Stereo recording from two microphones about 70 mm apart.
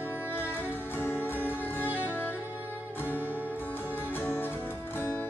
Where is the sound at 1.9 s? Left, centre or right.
Right.